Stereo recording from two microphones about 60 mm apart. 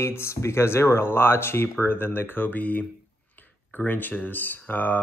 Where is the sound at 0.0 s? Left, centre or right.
Left.